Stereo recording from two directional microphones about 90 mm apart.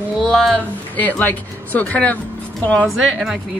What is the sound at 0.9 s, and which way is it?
Speech, 20° left (ahead or behind).